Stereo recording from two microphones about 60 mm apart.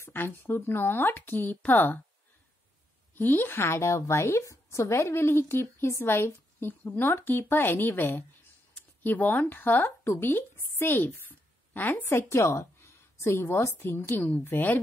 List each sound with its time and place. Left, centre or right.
0.0 s a woman's voice: left
3.2 s a woman's voice: left
12.3 s a woman's voice: left